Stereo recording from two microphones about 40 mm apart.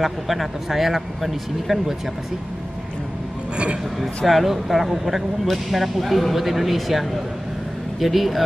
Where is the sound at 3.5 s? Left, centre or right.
Right.